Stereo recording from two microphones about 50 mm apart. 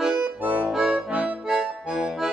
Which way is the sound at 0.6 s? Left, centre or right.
Centre.